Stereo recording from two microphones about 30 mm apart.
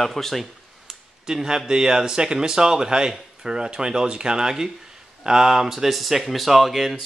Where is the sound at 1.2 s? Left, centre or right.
Centre.